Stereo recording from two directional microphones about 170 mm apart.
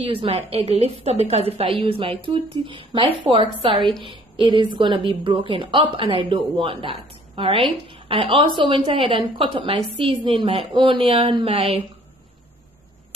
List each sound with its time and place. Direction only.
0.1 s a woman's voice: 30° right (ahead or behind)